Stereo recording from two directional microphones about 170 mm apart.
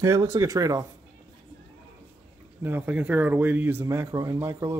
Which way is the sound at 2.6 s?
10° right (ahead or behind).